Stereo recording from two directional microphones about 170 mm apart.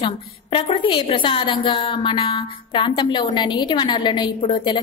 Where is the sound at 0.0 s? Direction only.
30° left (ahead or behind).